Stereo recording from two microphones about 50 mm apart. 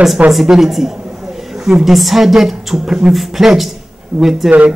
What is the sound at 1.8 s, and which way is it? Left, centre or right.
A woman's voice, centre.